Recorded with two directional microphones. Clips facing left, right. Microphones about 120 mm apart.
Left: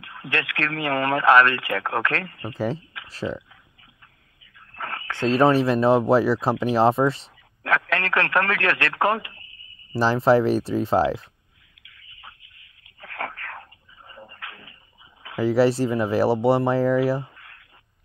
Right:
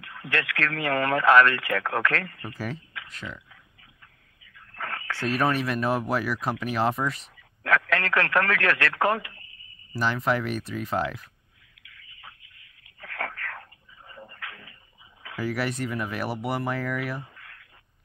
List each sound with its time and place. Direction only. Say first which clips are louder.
0.0 s speech: left 1 dB; 20° left (ahead or behind)
3.1 s speech: left 12 dB; 35° left (ahead or behind)
4.7 s speech: left 2 dB; 20° left (ahead or behind)
9.9 s speech: left 8 dB; 30° left (ahead or behind)
13.0 s a sound: left 2 dB; 20° left (ahead or behind)
14.1 s dog: left 1 dB; 20° left (ahead or behind)
15.2 s speech: left 10 dB; 25° left (ahead or behind)